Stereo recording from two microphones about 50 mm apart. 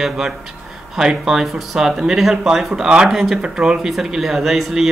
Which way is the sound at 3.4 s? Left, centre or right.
Centre.